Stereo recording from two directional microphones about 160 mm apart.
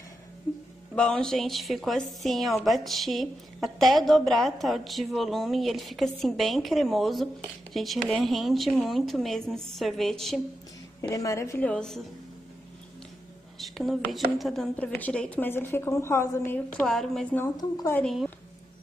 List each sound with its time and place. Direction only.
0.9 s a woman's voice: 5° left (ahead or behind)
11.0 s speech: 20° left (ahead or behind)
11.7 s a woman's voice: 5° left (ahead or behind)
13.6 s speech: centre (ahead or behind)
17.6 s speech: 25° left (ahead or behind)
17.9 s a woman's voice: centre (ahead or behind)